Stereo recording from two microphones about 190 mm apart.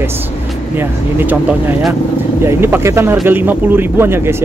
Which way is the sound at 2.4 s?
15° right (ahead or behind).